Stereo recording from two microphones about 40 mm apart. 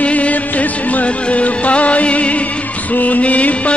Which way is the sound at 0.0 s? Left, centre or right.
Left.